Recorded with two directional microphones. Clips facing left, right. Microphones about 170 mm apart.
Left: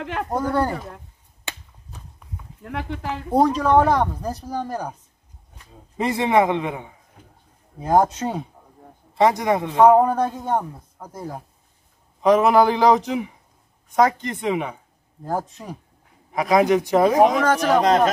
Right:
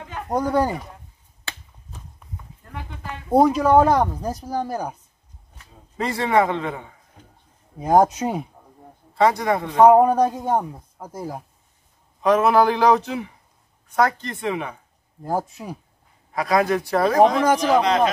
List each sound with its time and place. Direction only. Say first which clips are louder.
0.0 s speech: left 6 dB; 90° left
0.3 s a man's voice: right 2 dB; 15° right (ahead or behind)
2.6 s speech: left 8 dB; 75° left (ahead or behind)
3.3 s a man's voice: right 2 dB; 10° right (ahead or behind)
5.9 s a man's voice: left 1 dB; 20° left (ahead or behind)
7.8 s a man's voice: right 2 dB; 15° right (ahead or behind)
9.1 s a man's voice: left 1 dB; 20° left (ahead or behind)
9.8 s a man's voice: right 2 dB; 10° right (ahead or behind)
12.2 s a man's voice: left 1 dB; 15° left (ahead or behind)
15.2 s a man's voice: right 1 dB; 5° right (ahead or behind)
16.3 s a man's voice: left 3 dB; 20° left (ahead or behind)
17.8 s speech: left 2 dB; 45° left (ahead or behind)